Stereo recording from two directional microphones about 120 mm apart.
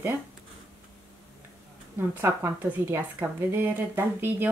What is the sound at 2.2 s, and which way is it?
A woman's voice, 20° right (ahead or behind).